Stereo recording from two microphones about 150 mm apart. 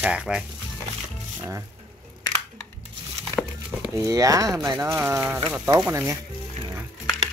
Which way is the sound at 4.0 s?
25° right (ahead or behind).